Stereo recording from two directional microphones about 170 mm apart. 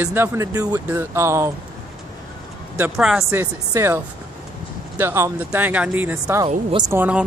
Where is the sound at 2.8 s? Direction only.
5° right (ahead or behind).